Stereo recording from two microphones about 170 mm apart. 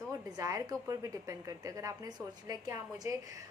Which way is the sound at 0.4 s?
20° right (ahead or behind).